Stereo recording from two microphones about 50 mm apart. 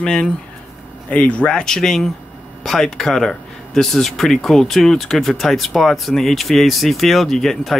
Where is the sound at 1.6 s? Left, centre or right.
Centre.